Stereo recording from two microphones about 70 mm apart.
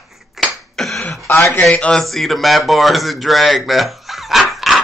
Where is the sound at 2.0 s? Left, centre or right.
Centre.